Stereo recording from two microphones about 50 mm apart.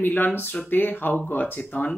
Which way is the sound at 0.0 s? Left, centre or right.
Left.